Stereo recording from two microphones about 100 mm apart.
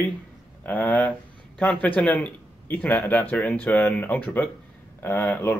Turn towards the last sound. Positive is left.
turn(degrees=15)  # may be behind; listen again after turning